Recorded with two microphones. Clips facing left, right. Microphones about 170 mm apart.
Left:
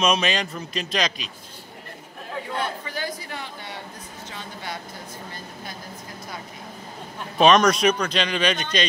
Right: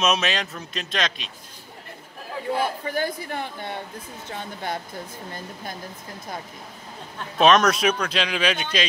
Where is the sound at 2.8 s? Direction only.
50° right (ahead or behind).